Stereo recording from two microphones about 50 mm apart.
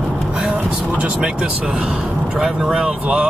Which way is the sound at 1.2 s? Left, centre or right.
Centre.